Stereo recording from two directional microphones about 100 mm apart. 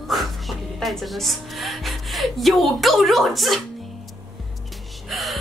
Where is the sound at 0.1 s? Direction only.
Centre (ahead or behind).